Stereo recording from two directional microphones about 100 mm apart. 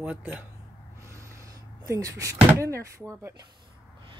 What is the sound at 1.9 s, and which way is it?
Speech, 35° right (ahead or behind).